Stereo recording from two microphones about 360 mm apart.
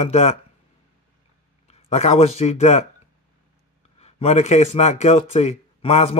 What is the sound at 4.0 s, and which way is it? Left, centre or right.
A man's voice, centre.